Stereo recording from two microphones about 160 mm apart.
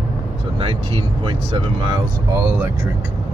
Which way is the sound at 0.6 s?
35° right (ahead or behind).